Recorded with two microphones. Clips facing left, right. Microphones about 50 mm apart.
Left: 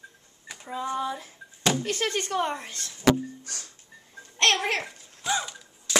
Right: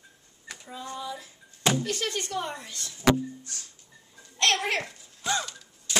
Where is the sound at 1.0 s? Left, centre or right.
Left.